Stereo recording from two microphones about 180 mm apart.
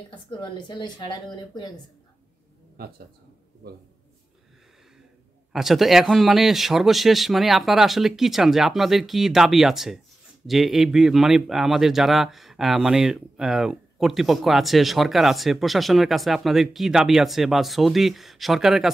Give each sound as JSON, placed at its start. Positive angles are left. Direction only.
{"t": 0.1, "sound": "a woman's voice", "side_deg": 25}
{"t": 2.8, "sound": "speech", "side_deg": -60}
{"t": 5.5, "sound": "speech", "side_deg": 0}